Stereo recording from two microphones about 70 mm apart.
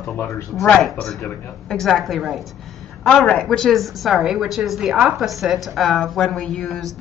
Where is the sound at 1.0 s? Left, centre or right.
Centre.